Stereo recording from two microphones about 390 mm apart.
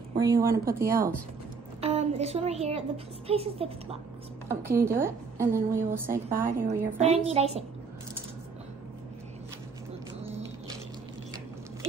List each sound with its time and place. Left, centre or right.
0.2 s a woman's voice: centre
6.3 s a woman's voice: right